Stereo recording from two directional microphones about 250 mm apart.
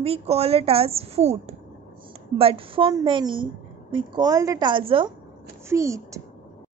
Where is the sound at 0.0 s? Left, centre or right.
Right.